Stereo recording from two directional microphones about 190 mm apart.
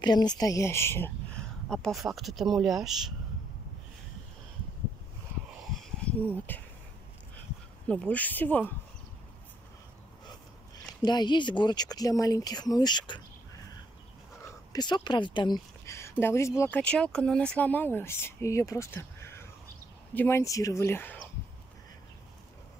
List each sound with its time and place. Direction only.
0.0 s speech: 20° left (ahead or behind)
1.7 s speech: centre (ahead or behind)
6.0 s speech: 10° left (ahead or behind)
7.9 s speech: 5° left (ahead or behind)
11.0 s speech: 20° left (ahead or behind)
14.4 s a sound: 20° left (ahead or behind)
15.0 s speech: 25° left (ahead or behind)